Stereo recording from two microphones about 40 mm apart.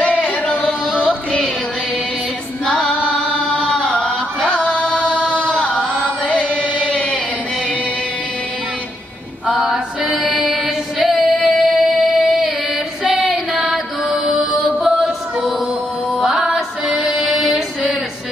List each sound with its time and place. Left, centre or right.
0.0 s singing: left
2.6 s female singing: centre
3.3 s music: centre
4.5 s music: left
5.3 s chant: left
6.5 s chant: right
6.9 s chant: left
9.5 s music: centre
10.0 s music: right
10.3 s music: centre
13.0 s female singing: centre
13.5 s music: centre
17.0 s child singing: centre